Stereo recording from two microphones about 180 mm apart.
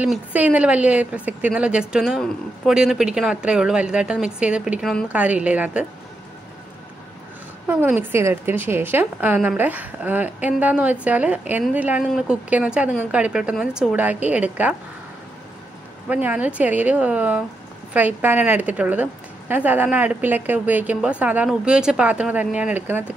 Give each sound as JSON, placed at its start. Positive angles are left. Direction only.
{"t": 0.0, "sound": "a woman's voice", "side_deg": -5}
{"t": 7.6, "sound": "a woman's voice", "side_deg": -10}
{"t": 16.1, "sound": "a woman's voice", "side_deg": -10}